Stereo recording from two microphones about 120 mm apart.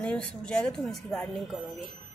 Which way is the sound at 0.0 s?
10° left (ahead or behind).